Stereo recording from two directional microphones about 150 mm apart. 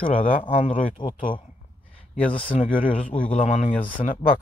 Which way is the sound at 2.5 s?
60° left (ahead or behind).